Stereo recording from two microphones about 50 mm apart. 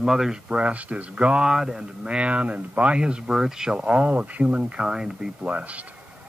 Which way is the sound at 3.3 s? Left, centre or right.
Centre.